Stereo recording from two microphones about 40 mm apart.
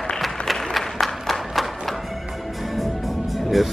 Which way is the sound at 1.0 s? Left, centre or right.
Centre.